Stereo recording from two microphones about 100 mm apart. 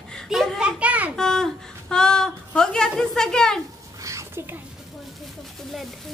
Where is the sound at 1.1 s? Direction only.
5° left (ahead or behind).